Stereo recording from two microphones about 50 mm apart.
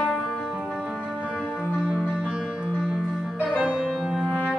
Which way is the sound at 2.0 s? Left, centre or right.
Right.